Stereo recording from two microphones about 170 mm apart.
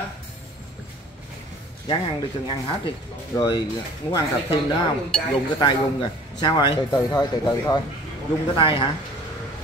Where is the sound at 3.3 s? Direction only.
25° left (ahead or behind).